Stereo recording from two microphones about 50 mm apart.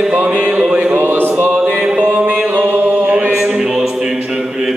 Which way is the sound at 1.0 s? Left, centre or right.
Right.